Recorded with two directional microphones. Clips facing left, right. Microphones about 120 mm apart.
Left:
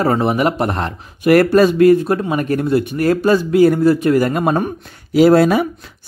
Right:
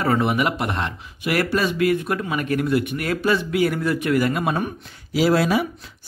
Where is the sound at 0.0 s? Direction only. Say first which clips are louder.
Left 5 dB; 35° left (ahead or behind).